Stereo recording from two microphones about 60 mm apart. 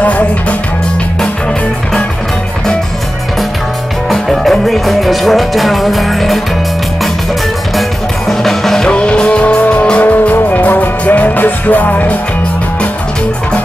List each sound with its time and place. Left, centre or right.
0.0 s music: left
4.1 s music: centre
8.3 s music: centre
8.9 s music: centre